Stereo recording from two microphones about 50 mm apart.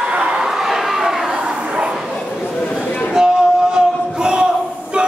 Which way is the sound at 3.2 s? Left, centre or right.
Centre.